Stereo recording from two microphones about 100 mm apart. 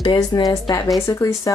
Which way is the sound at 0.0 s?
40° left (ahead or behind).